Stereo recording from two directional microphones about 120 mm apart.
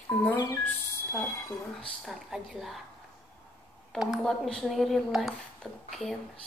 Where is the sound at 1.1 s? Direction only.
25° left (ahead or behind).